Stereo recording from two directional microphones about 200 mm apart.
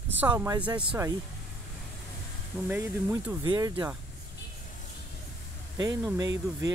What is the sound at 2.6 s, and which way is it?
Speech, 10° right (ahead or behind).